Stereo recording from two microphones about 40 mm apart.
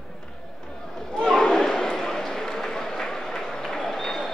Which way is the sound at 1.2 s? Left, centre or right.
Centre.